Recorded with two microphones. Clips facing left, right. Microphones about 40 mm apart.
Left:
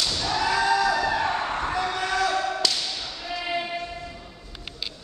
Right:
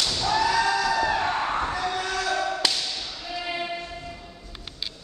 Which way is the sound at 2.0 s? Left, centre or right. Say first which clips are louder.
Left 3 dB; left.